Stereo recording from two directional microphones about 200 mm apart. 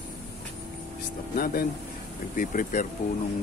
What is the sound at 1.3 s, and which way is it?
Speech, 50° left (ahead or behind).